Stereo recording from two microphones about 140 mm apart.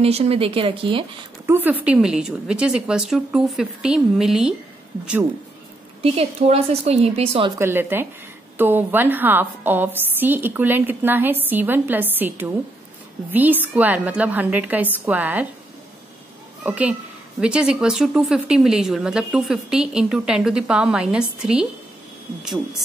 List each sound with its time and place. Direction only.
0.0 s speech: 45° right (ahead or behind)
1.4 s speech: 15° right (ahead or behind)
6.0 s speech: 45° right (ahead or behind)
7.5 s a woman's voice: 15° right (ahead or behind)
16.6 s a woman's voice: 10° right (ahead or behind)